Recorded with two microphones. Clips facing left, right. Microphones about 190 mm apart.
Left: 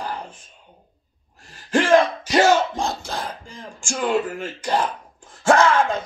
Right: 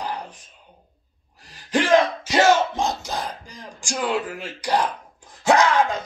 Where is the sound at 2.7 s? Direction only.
20° right (ahead or behind).